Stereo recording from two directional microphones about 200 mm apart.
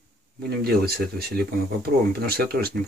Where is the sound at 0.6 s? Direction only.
50° right (ahead or behind).